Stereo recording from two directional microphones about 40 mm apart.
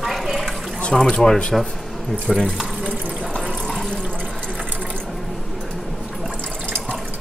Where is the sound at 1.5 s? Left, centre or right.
Centre.